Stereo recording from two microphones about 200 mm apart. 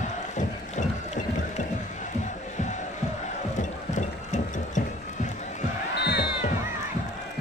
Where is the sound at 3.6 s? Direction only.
40° left (ahead or behind).